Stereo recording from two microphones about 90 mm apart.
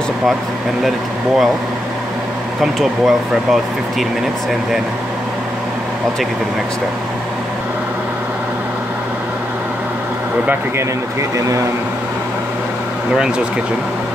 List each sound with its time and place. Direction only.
2.6 s speech: centre (ahead or behind)
11.3 s speech: 35° right (ahead or behind)